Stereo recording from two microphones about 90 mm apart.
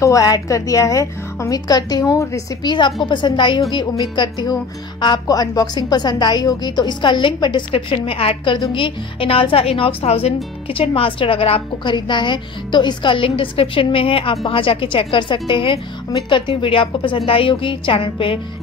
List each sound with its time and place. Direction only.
0.0 s a woman's voice: 40° left (ahead or behind)
2.6 s a woman's voice: 55° left (ahead or behind)
3.9 s a woman's voice: 50° left (ahead or behind)
7.7 s speech: 90° left
11.0 s a woman's voice: 80° left
17.3 s a woman's voice: 80° left